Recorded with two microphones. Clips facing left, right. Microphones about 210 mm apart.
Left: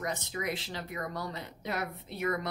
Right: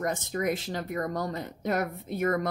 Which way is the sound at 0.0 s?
50° right (ahead or behind).